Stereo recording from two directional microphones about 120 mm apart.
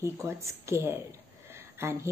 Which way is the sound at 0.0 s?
25° right (ahead or behind).